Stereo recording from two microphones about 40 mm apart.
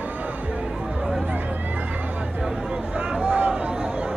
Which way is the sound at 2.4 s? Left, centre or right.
Centre.